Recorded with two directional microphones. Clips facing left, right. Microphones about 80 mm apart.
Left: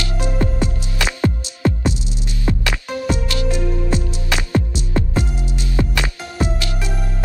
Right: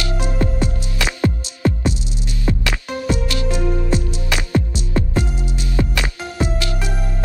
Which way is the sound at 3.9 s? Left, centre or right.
Left.